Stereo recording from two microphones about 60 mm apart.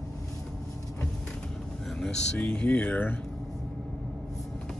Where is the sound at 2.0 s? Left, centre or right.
Centre.